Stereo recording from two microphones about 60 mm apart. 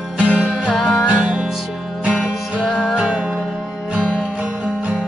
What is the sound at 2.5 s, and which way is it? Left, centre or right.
Music, centre.